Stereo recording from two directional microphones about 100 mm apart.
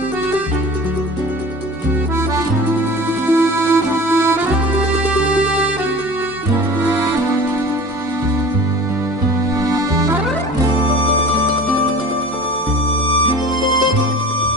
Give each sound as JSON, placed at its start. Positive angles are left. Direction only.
{"t": 3.3, "sound": "accordion", "side_deg": -25}
{"t": 9.7, "sound": "music", "side_deg": -35}